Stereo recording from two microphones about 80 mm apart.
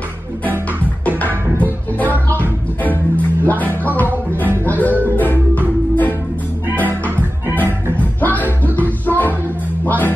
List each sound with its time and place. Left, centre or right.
1.0 s music: left
3.4 s music: left
6.9 s music: right
8.0 s music: left